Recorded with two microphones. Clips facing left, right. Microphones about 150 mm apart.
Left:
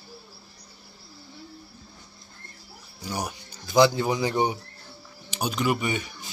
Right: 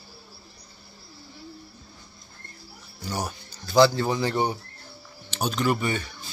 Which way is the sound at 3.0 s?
15° left (ahead or behind).